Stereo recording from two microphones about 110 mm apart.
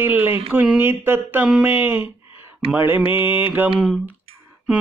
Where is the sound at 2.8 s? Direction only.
20° right (ahead or behind).